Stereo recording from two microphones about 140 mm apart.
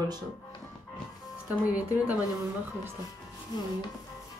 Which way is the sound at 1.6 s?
10° right (ahead or behind).